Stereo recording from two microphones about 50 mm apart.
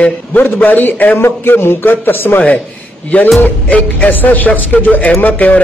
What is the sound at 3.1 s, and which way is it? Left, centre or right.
A man's voice, left.